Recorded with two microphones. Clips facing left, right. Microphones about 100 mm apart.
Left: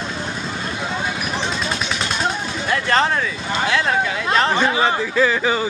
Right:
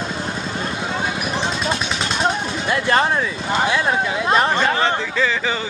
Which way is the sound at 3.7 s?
15° right (ahead or behind).